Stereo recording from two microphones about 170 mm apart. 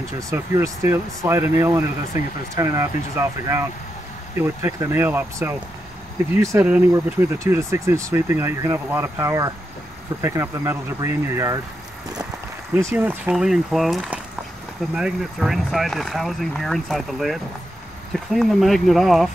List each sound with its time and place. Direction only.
0.3 s speech: 15° right (ahead or behind)
12.9 s speech: 10° right (ahead or behind)